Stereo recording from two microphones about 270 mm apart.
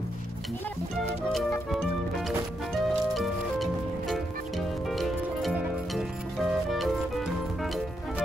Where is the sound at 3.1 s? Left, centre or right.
Centre.